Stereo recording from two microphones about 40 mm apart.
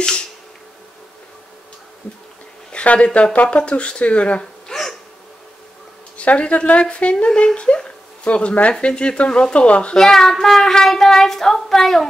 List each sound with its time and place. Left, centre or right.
2.7 s speech: left
4.6 s hiccup: centre
6.1 s speech: left
9.9 s child singing: centre